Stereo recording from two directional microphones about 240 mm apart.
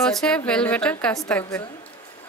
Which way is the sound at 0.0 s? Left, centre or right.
Centre.